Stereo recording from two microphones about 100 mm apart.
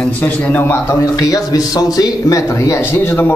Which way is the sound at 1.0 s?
35° left (ahead or behind).